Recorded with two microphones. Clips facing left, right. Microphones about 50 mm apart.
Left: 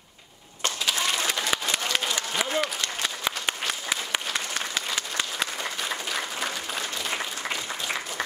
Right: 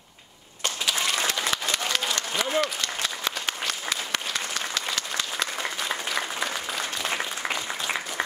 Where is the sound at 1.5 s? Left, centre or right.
Centre.